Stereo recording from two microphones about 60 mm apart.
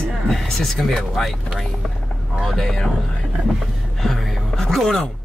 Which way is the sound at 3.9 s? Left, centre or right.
Centre.